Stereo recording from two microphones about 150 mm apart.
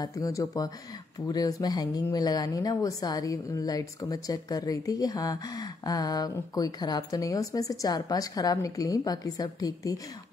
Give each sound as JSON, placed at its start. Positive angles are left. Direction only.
{"t": 0.0, "sound": "speech", "side_deg": 20}